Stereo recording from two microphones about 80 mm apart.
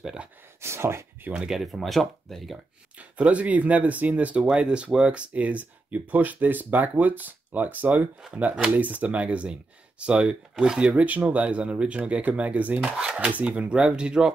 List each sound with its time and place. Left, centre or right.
0.0 s speech: centre
0.6 s speech: right
1.3 s speech: centre
3.0 s speech: centre
12.9 s speech: centre